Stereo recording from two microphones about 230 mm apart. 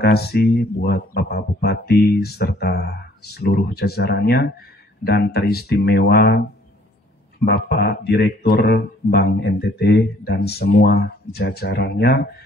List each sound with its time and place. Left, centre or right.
0.0 s speech: left
7.4 s speech: left